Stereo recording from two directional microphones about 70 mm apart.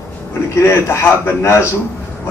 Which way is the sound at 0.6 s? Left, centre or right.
Left.